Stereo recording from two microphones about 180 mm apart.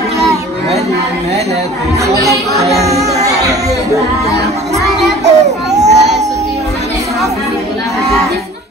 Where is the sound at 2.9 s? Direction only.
40° right (ahead or behind).